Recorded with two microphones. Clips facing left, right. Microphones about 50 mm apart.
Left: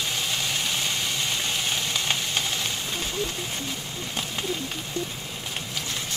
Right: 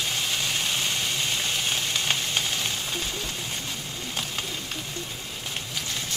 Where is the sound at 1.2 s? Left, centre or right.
Centre.